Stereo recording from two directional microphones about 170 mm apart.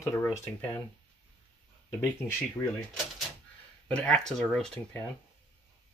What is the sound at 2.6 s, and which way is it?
Speech, 15° left (ahead or behind).